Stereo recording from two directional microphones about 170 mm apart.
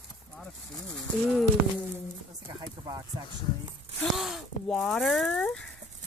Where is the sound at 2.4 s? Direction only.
25° right (ahead or behind).